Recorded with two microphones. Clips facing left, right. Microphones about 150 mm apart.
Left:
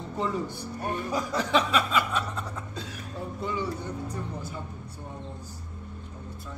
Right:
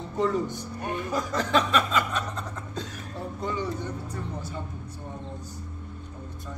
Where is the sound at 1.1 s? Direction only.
10° left (ahead or behind).